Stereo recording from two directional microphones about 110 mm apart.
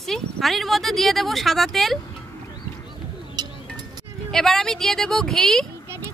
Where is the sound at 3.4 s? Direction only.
40° right (ahead or behind).